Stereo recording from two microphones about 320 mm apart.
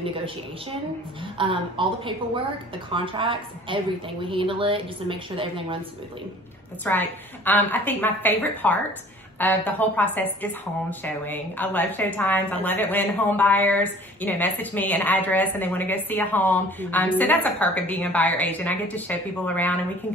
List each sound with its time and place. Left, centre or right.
0.0 s speech: centre
1.4 s speech: centre
6.8 s speech: centre